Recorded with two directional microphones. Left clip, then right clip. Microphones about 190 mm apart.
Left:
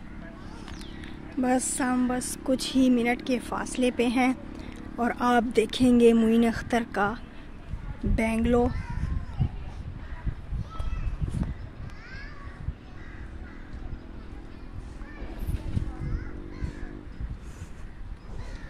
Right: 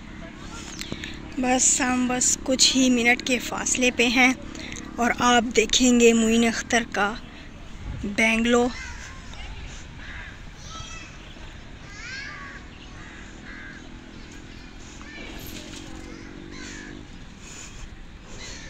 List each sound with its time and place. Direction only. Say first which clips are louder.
0.6 s speech: right 11 dB; 10° left (ahead or behind)
8.2 s speech: right 5 dB; 15° left (ahead or behind)